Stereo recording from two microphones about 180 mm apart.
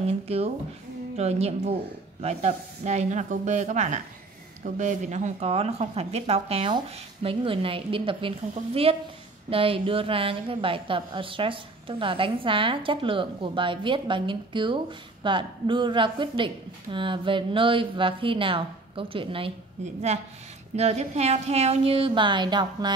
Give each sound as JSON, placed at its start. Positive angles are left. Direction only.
{"t": 0.0, "sound": "a woman's voice", "side_deg": -35}